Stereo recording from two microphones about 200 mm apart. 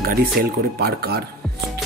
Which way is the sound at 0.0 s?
50° right (ahead or behind).